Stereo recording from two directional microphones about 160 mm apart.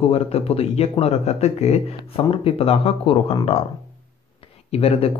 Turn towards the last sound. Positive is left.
turn(degrees=40)  # may be behind; listen again after turning